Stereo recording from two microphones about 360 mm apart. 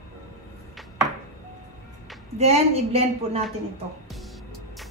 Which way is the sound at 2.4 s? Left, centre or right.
Centre.